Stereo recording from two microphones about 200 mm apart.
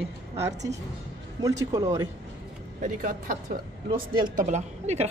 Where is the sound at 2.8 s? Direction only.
40° right (ahead or behind).